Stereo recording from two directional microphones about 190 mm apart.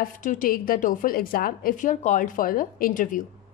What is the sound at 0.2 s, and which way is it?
Speech, 45° left (ahead or behind).